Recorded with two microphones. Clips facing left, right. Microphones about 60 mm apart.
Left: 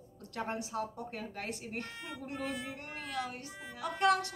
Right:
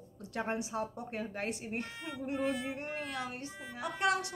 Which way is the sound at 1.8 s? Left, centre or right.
Centre.